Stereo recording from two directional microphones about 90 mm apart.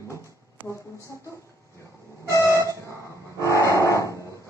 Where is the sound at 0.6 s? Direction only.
25° right (ahead or behind).